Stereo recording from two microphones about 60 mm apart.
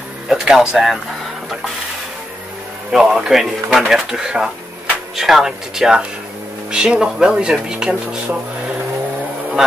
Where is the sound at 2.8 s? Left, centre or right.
Centre.